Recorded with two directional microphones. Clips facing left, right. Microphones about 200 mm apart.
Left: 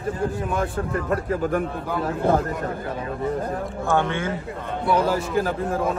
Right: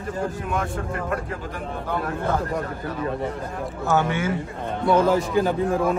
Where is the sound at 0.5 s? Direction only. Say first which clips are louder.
Left 2 dB; 35° left (ahead or behind).